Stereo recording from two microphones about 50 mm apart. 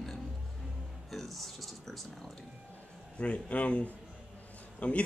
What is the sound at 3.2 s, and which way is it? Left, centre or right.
Speech, left.